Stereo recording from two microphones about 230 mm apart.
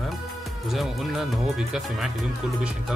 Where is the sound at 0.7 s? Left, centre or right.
Centre.